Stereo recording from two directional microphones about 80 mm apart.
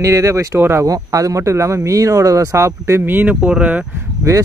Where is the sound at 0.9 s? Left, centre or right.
Right; by 3.8 s centre.